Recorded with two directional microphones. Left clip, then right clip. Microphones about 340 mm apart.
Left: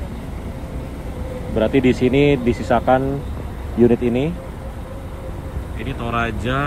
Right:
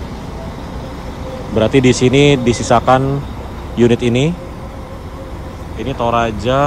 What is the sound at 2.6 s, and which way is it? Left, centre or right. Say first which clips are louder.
Speech: right 5 dB; left.